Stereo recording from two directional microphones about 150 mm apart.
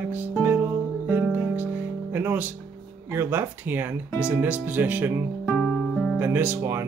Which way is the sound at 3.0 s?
15° right (ahead or behind).